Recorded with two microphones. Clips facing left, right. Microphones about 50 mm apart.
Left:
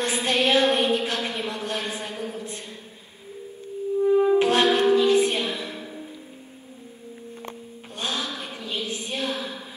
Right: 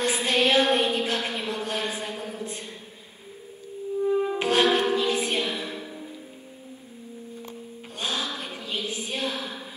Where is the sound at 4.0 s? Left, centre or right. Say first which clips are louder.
Left 5 dB; centre.